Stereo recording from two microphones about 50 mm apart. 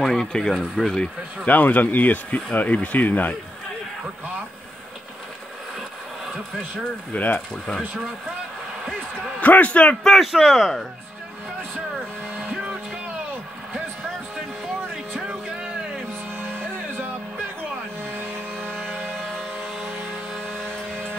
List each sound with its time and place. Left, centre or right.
0.0 s speech: centre
1.4 s speech: left
7.1 s a man's voice: left
9.4 s a man's voice: left
10.2 s speech: centre
12.4 s vehicle: centre
15.1 s a sound: right
16.1 s music: right
18.1 s vehicle: right
19.0 s vehicle: centre